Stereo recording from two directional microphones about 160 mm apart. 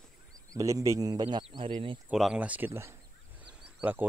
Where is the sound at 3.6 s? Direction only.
10° right (ahead or behind).